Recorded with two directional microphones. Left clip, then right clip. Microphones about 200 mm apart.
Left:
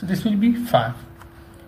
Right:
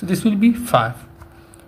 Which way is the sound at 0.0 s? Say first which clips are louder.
Right 4 dB; 40° right (ahead or behind).